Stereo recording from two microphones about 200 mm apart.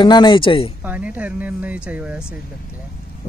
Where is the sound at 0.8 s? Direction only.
5° right (ahead or behind).